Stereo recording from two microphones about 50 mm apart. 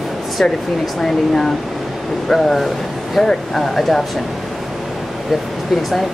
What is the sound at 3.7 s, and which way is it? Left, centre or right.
Speech, centre.